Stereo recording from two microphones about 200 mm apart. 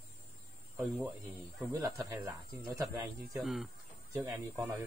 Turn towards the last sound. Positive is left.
turn(degrees=-15)  # may be behind; listen again after turning